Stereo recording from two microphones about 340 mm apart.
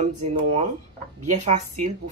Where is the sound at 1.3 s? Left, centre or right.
Right.